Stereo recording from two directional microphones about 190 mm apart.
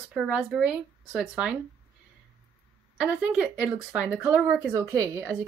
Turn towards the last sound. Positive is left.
turn(degrees=-15)  # may be behind; listen again after turning